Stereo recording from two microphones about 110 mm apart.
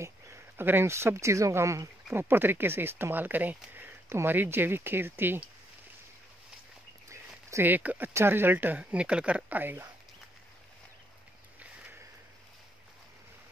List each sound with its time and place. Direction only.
0.0 s speech: 20° right (ahead or behind)
7.1 s a sound: 20° right (ahead or behind)
8.1 s speech: 20° right (ahead or behind)